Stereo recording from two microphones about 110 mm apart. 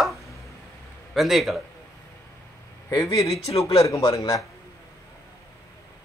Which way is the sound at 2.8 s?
30° left (ahead or behind).